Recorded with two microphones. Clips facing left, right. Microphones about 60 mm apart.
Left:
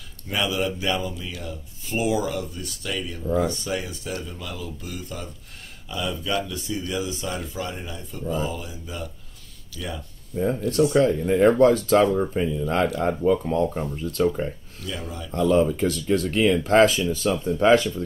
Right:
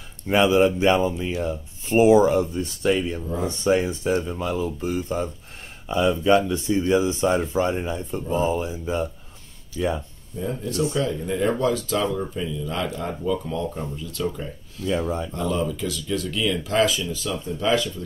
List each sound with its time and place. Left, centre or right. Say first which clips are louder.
0.3 s speech: right 8 dB; right
10.9 s speech: left 5 dB; left
14.8 s speech: right 10 dB; right
15.5 s speech: left 8 dB; left